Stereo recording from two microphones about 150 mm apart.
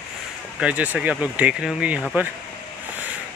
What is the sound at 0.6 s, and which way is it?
Speech, 5° right (ahead or behind).